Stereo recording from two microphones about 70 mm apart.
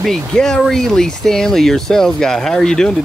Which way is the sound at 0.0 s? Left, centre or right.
Centre.